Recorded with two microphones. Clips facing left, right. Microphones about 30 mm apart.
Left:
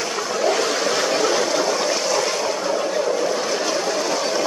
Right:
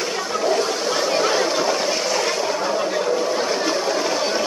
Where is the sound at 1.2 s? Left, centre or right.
Centre.